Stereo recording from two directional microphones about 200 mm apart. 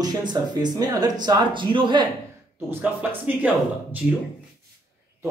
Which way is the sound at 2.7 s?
10° right (ahead or behind).